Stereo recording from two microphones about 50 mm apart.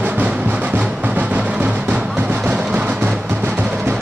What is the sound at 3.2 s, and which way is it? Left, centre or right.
Music, right.